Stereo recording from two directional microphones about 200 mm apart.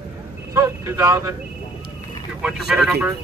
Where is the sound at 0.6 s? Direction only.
15° right (ahead or behind).